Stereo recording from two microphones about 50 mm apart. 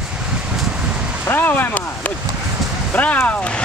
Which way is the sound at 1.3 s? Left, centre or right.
Left.